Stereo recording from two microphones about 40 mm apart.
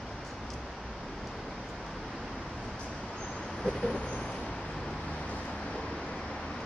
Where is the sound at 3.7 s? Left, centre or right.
Centre.